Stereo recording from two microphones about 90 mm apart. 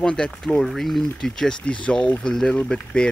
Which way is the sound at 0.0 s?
10° left (ahead or behind).